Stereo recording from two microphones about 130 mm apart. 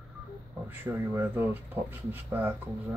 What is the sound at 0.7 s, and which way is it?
Speech, 15° right (ahead or behind).